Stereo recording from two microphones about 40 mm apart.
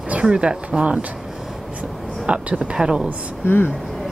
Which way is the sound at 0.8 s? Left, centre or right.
Right.